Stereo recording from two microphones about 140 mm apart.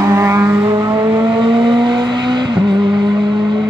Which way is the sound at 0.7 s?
25° right (ahead or behind).